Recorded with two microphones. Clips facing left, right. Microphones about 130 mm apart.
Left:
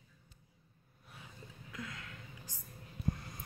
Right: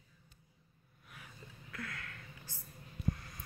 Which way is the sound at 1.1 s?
20° left (ahead or behind).